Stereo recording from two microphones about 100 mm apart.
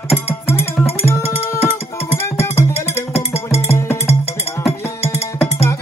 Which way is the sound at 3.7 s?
25° left (ahead or behind).